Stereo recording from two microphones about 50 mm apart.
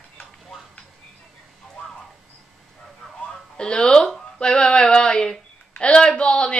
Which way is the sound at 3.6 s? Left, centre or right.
Centre.